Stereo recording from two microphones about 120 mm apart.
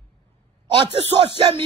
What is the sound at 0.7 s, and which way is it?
Speech, 55° right (ahead or behind).